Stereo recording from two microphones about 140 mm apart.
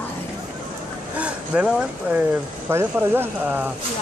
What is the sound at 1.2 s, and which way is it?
Speech, 10° right (ahead or behind).